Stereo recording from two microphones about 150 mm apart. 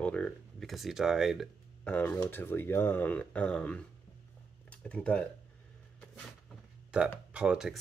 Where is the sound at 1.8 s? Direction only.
10° left (ahead or behind).